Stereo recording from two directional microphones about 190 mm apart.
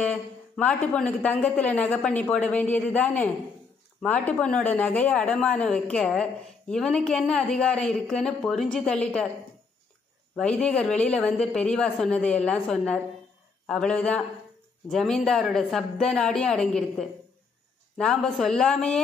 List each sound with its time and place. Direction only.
0.0 s a woman's voice: 5° left (ahead or behind)
10.3 s speech: 5° left (ahead or behind)